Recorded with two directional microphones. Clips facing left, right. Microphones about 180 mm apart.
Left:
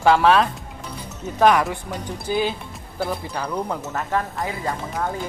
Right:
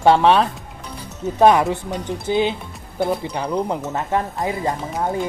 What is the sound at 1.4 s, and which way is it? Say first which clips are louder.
Speech: right 3 dB; 25° right (ahead or behind).